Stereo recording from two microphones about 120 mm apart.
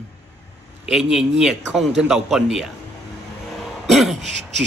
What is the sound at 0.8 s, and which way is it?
Speech, 5° right (ahead or behind).